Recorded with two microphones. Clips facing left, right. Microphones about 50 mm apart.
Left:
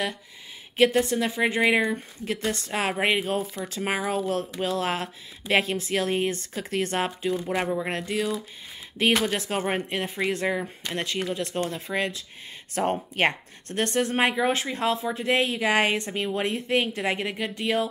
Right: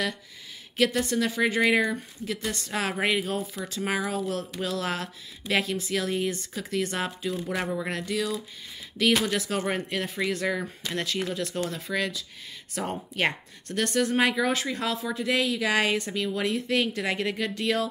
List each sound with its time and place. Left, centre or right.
0.7 s speech: left
2.2 s speech: left
3.3 s speech: left; by 17.8 s centre